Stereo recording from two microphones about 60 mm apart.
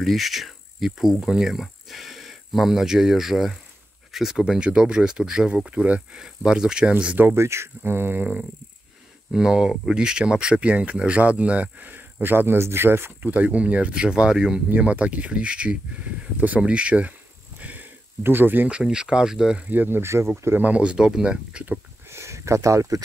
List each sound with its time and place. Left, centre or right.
0.0 s speech: centre
7.2 s speech: right
9.3 s speech: centre; by 13.1 s right
13.2 s speech: right; by 14.6 s centre
14.8 s speech: right
17.6 s a sound: right
18.2 s speech: right
18.7 s speech: centre
19.7 s speech: right
20.0 s speech: right
20.4 s speech: right
20.7 s speech: centre
22.1 s a sound: right